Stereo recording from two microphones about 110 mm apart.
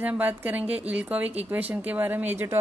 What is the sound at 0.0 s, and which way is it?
Speech, 15° right (ahead or behind).